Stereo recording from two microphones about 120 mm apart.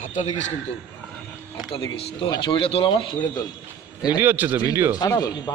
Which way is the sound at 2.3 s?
40° left (ahead or behind).